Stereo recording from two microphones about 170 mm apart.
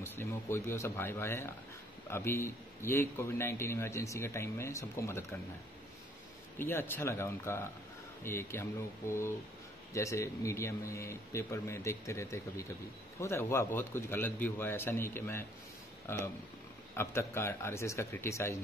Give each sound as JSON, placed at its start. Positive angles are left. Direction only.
{"t": 0.0, "sound": "a man's voice", "side_deg": 15}
{"t": 6.6, "sound": "a man's voice", "side_deg": 10}
{"t": 9.9, "sound": "a man's voice", "side_deg": 15}
{"t": 16.9, "sound": "a man's voice", "side_deg": 15}